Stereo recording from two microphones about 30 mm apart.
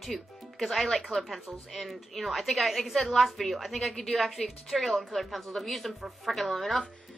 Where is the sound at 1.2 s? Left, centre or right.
Centre.